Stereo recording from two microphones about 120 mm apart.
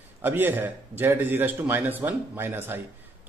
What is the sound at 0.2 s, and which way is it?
A man's voice, 15° right (ahead or behind).